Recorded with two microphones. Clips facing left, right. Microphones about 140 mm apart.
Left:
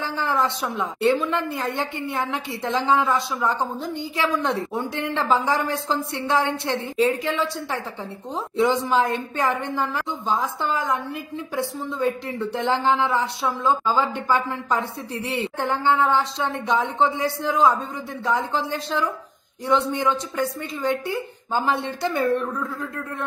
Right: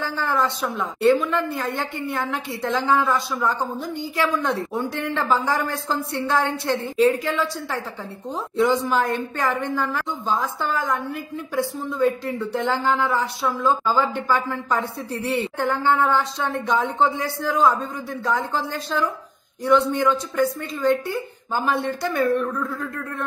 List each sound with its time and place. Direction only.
0.0 s a woman's voice: 25° left (ahead or behind)
21.5 s a woman's voice: 25° left (ahead or behind)